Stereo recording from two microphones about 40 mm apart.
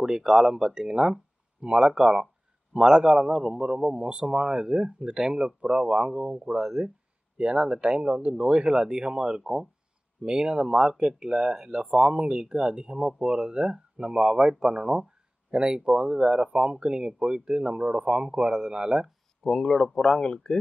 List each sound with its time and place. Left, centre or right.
0.0 s speech: centre
11.9 s speech: right
19.4 s speech: centre